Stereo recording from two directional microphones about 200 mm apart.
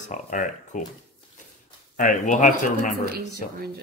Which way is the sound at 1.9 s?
40° left (ahead or behind).